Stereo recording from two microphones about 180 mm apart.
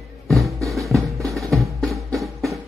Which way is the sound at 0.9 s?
Centre (ahead or behind).